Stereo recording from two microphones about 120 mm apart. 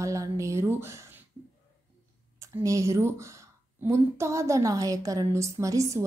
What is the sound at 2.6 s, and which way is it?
A woman's voice, 25° right (ahead or behind).